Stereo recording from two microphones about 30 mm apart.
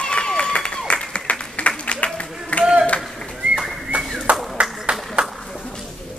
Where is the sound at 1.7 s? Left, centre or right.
Left.